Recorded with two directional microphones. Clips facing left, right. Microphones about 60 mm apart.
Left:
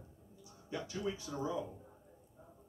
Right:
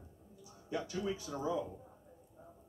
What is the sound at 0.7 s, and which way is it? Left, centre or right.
Speech, centre.